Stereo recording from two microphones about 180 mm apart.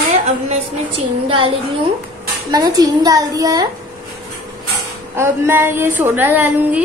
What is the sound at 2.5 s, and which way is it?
A woman's voice, 20° right (ahead or behind).